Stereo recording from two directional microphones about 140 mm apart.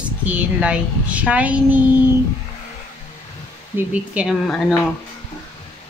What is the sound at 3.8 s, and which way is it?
Speech, 10° right (ahead or behind).